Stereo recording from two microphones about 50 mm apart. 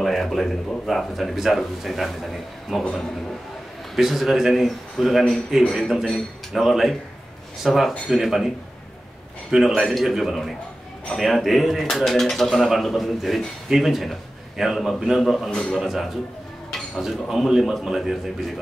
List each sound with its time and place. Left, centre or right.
0.0 s speech: centre
3.9 s speech: centre
9.5 s speech: centre